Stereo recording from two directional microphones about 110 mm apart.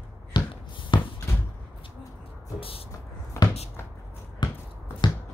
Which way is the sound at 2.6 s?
60° left (ahead or behind).